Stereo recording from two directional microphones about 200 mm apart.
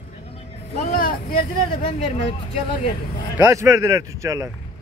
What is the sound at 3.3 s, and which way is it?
Speech, 15° right (ahead or behind).